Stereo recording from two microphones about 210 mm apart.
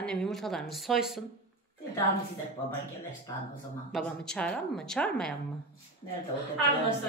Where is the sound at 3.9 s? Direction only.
5° left (ahead or behind).